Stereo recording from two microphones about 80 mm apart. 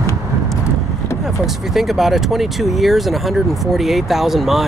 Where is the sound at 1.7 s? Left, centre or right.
Centre.